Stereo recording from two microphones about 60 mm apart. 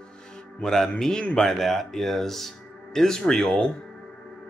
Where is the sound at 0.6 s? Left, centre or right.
Centre.